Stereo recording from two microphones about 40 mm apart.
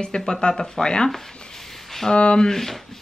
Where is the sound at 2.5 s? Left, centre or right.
Centre.